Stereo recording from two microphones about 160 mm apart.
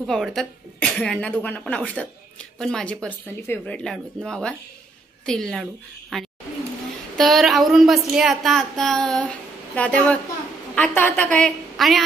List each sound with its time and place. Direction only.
0.0 s a woman's voice: centre (ahead or behind)